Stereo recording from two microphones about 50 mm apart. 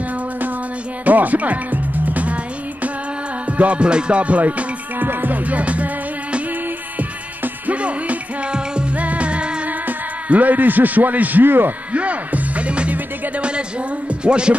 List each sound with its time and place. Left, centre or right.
1.0 s music: right
7.0 s music: right
8.9 s music: right
9.7 s a man's voice: right
11.9 s music: right
13.4 s speech: right